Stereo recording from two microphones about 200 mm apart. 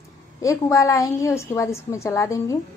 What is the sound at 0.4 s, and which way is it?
A woman's voice, 15° left (ahead or behind).